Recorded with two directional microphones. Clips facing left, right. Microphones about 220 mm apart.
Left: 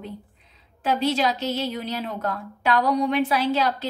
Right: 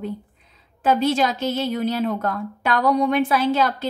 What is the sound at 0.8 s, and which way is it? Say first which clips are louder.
A woman's voice: right 3 dB; 50° right (ahead or behind).